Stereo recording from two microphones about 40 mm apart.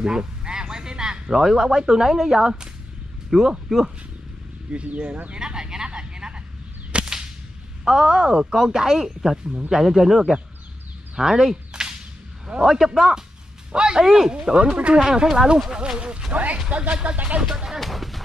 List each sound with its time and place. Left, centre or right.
0.0 s speech: centre
4.7 s speech: right
5.3 s speech: right
5.9 s vehicle: right
6.9 s whip: right
7.8 s speech: centre
11.7 s a sound: centre
12.6 s speech: centre
13.7 s speech: right
15.0 s speech: centre
17.7 s a sound: centre